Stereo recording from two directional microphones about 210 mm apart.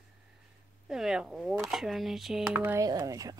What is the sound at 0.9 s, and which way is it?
Speech, 5° right (ahead or behind).